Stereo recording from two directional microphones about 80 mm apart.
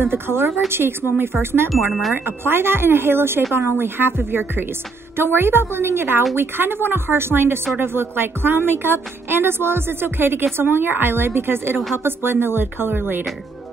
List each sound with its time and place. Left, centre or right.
0.0 s speech: right
1.7 s speech: centre
2.1 s speech: right